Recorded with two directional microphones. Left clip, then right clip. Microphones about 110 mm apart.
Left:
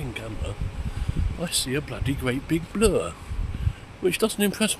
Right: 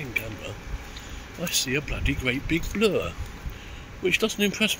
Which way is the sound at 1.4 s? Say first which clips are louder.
Right 1 dB; 65° left (ahead or behind).